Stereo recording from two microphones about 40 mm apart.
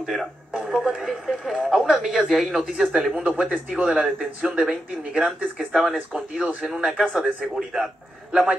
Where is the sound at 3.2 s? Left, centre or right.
Right.